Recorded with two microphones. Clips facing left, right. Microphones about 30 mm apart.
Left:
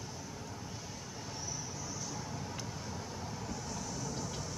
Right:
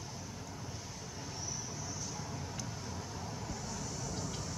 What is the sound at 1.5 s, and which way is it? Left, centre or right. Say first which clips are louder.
Vehicle: left 1 dB; centre.